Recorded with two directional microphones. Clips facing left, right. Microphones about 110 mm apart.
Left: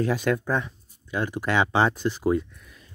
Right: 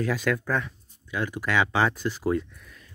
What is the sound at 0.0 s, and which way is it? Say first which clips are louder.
Speech: left 2 dB; 25° left (ahead or behind).